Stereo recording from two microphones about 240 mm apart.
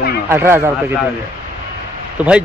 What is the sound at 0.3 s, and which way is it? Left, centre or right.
Speech, centre.